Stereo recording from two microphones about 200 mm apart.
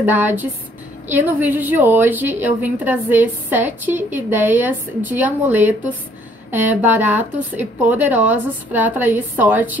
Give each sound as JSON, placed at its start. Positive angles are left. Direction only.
{"t": 0.0, "sound": "a woman's voice", "side_deg": -10}